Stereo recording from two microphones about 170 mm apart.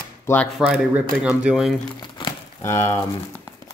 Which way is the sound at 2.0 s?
25° left (ahead or behind).